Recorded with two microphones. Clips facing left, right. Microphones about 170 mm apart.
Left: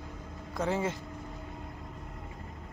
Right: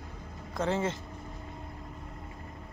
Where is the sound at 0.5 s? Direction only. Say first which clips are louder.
Right 1 dB; 10° left (ahead or behind).